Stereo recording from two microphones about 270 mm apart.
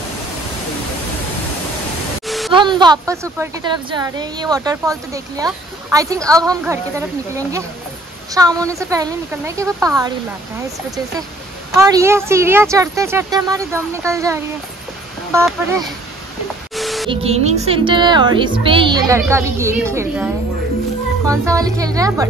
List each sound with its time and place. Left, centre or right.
2.2 s a sound: centre
2.5 s a woman's voice: centre
11.7 s a woman's voice: centre
16.7 s music: centre
17.1 s a woman's voice: right
21.3 s a woman's voice: centre